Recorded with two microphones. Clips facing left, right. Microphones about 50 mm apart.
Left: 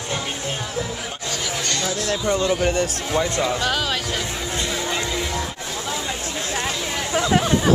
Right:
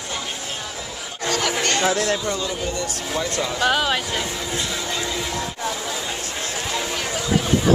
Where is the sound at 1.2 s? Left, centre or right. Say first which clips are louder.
Right 7 dB; right.